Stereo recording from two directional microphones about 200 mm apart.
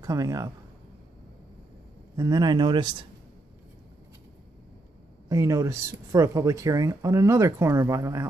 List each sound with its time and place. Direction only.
0.0 s a man's voice: 15° right (ahead or behind)
2.1 s speech: 20° right (ahead or behind)
5.3 s speech: 15° right (ahead or behind)